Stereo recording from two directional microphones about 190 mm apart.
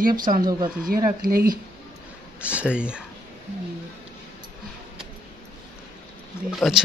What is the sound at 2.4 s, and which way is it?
Speech, 5° right (ahead or behind).